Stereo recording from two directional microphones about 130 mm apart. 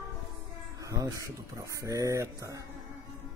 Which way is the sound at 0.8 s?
25° right (ahead or behind).